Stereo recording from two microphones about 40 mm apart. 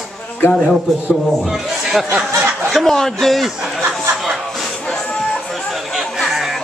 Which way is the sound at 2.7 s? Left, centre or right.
Centre.